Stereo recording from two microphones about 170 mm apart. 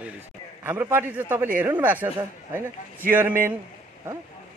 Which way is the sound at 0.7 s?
15° right (ahead or behind).